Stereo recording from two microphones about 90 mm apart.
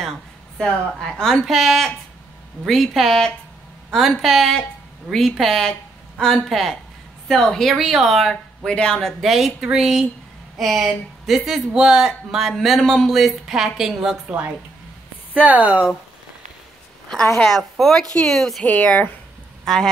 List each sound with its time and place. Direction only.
0.6 s speech: 5° left (ahead or behind)
15.3 s speech: 15° right (ahead or behind)
17.4 s speech: 5° left (ahead or behind)
18.7 s speech: 15° left (ahead or behind)
19.6 s speech: 5° left (ahead or behind)